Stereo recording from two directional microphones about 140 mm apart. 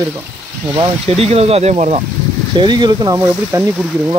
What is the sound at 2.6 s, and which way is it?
Speech, 30° right (ahead or behind).